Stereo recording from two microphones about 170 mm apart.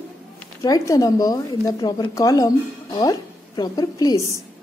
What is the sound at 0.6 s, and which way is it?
Speech, 20° left (ahead or behind).